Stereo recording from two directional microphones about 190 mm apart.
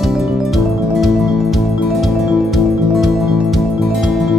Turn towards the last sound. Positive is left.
turn(degrees=0)  # may be behind; listen again after turning